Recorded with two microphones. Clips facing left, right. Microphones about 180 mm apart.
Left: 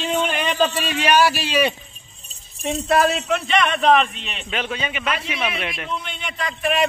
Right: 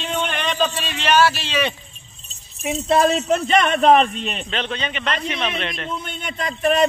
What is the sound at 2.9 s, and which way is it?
Speech, 30° right (ahead or behind).